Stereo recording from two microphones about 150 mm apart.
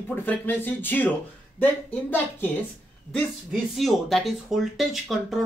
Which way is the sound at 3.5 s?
Centre (ahead or behind).